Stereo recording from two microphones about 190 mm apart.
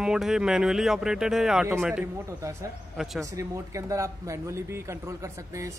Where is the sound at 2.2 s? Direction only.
15° right (ahead or behind).